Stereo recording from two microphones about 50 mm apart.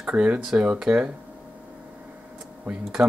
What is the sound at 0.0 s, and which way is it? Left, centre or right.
Speech, right.